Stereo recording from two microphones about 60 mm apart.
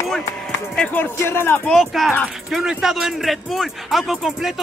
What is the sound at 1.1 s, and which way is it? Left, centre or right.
Speech, left.